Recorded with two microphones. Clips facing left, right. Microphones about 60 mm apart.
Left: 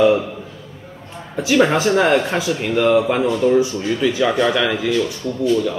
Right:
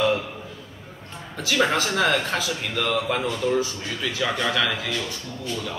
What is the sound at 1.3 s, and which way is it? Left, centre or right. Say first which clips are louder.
Speech: left 7 dB; centre.